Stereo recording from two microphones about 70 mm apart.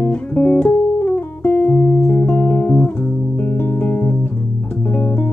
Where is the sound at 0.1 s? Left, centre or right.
Left.